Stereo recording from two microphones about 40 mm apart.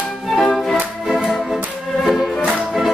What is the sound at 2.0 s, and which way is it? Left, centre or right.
Music, centre.